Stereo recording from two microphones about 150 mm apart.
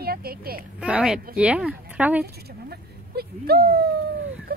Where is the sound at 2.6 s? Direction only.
90° right.